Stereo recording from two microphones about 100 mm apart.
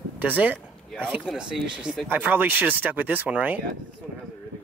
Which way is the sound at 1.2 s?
5° right (ahead or behind).